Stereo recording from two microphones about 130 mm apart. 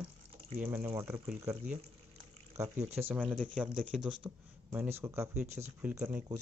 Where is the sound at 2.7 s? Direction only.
60° right (ahead or behind).